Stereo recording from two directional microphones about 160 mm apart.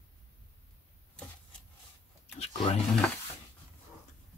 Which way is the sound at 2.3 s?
40° left (ahead or behind).